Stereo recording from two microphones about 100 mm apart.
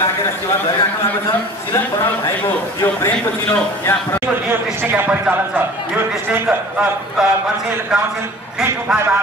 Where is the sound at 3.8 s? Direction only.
25° left (ahead or behind).